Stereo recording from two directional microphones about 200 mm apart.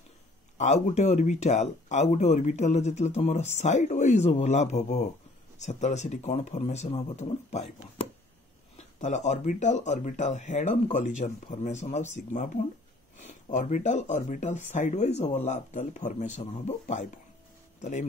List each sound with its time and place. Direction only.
0.6 s speech: 35° left (ahead or behind)
8.7 s speech: 35° left (ahead or behind)